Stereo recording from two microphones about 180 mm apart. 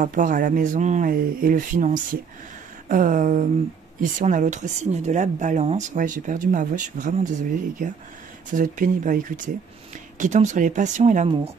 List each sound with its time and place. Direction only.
0.0 s speech: 45° right (ahead or behind)